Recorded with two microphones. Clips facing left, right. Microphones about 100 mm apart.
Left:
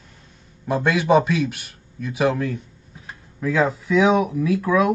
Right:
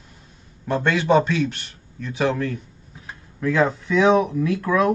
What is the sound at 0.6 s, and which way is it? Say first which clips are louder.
A man's voice: left 1 dB; 10° left (ahead or behind).